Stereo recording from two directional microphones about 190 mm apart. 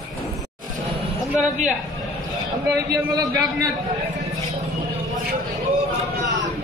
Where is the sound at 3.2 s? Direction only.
20° right (ahead or behind).